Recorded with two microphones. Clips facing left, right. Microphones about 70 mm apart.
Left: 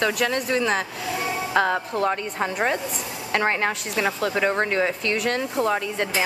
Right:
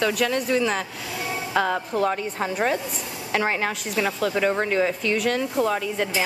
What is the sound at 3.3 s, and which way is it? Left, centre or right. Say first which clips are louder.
Speech: left 1 dB; centre.